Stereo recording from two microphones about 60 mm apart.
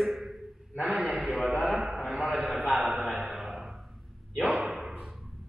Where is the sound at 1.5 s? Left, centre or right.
Centre.